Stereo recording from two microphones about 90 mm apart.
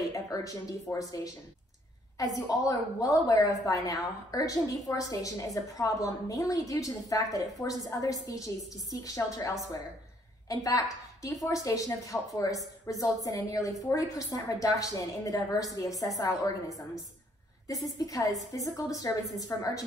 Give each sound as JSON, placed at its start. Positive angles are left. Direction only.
{"t": 0.1, "sound": "a woman's voice", "side_deg": 40}